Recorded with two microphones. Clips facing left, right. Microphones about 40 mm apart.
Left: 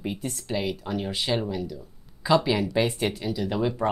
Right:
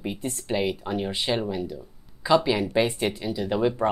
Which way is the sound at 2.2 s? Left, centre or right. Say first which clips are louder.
Right 1 dB; centre.